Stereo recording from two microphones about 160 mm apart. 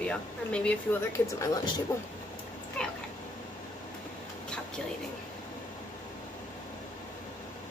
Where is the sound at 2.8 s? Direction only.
5° left (ahead or behind).